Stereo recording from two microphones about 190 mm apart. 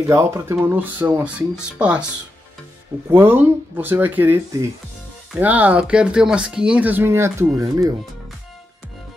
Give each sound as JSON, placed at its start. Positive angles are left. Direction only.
{"t": 0.1, "sound": "speech", "side_deg": -15}
{"t": 3.1, "sound": "speech", "side_deg": -10}